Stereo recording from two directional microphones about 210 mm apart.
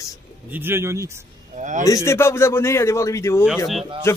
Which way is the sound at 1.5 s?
35° right (ahead or behind).